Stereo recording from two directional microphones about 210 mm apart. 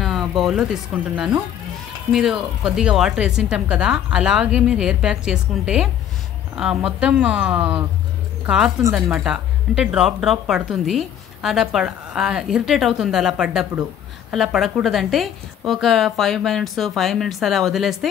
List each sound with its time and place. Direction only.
0.0 s speech: centre (ahead or behind)